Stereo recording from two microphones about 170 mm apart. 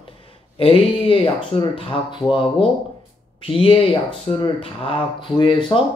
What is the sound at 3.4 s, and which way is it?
Speech, 35° left (ahead or behind).